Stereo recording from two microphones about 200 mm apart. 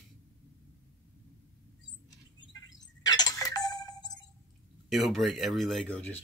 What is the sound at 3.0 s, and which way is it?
Ringtone, 20° left (ahead or behind).